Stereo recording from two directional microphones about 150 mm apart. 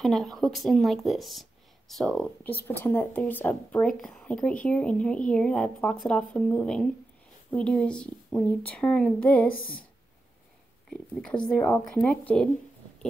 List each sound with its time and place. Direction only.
0.0 s a woman's voice: centre (ahead or behind)
10.9 s speech: 5° left (ahead or behind)